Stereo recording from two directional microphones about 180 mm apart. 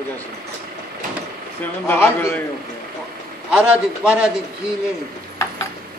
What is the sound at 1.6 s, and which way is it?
Speech, 10° left (ahead or behind).